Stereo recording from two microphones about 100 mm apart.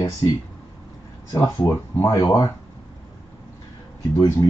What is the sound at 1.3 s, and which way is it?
Speech, 35° left (ahead or behind).